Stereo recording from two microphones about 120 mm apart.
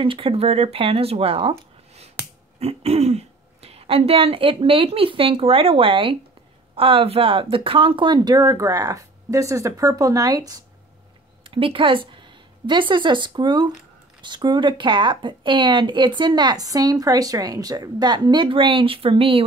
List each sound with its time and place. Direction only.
0.0 s speech: 45° right (ahead or behind)
2.6 s speech: 60° right (ahead or behind); by 10.6 s 30° right (ahead or behind)
11.4 s speech: 45° right (ahead or behind)